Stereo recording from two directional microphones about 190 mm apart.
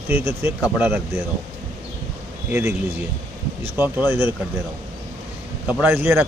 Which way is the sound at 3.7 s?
10° right (ahead or behind).